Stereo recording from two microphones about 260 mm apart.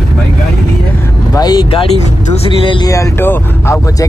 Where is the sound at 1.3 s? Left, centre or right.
Centre.